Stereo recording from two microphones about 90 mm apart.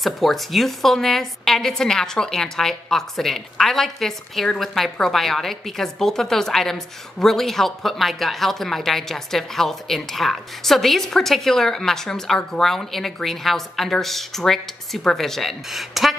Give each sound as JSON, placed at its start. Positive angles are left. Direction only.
{"t": 0.0, "sound": "a woman's voice", "side_deg": 0}